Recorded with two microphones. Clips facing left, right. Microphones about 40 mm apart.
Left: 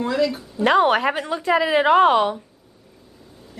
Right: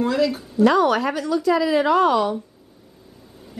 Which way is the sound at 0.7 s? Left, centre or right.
Left.